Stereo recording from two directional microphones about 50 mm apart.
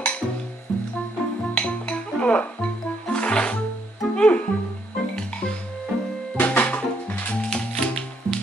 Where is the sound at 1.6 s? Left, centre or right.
Left.